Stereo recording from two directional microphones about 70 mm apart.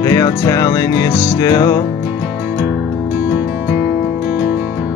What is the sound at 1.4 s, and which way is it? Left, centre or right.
Music, left.